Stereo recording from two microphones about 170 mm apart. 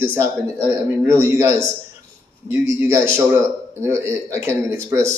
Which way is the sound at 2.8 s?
15° right (ahead or behind).